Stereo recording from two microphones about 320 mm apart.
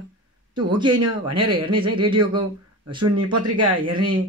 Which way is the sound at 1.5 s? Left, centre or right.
Centre.